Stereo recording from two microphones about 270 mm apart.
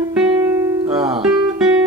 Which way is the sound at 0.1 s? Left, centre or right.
Centre.